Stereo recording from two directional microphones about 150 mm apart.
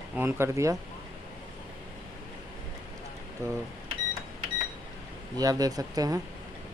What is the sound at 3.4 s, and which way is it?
Speech, 20° right (ahead or behind).